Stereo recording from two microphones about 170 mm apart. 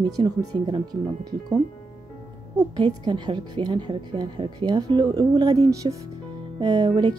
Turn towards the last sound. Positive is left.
turn(degrees=-25)  # may be behind; listen again after turning